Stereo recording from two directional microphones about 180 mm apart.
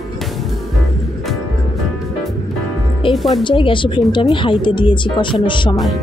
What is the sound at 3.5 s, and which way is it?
Speech, 30° left (ahead or behind).